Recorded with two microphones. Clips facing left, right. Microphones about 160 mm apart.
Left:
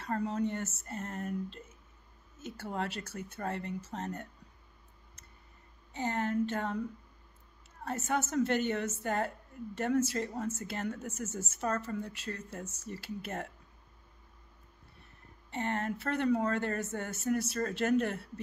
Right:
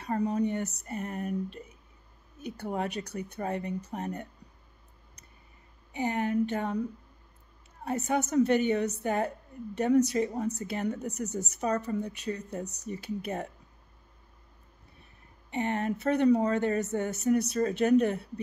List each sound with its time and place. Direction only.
0.0 s speech: 15° right (ahead or behind)
5.9 s speech: 15° right (ahead or behind)
7.8 s speech: 15° right (ahead or behind)
15.5 s speech: 15° right (ahead or behind)